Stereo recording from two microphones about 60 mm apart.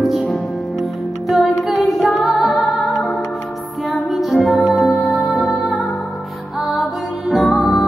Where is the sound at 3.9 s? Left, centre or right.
Centre.